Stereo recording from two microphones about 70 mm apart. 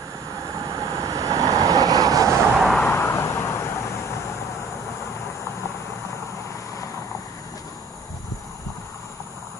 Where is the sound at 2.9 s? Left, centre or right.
Left.